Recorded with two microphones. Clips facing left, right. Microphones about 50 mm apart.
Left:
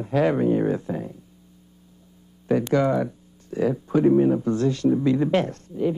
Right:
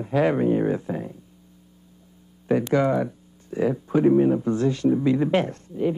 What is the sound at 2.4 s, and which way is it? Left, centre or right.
Speech, centre.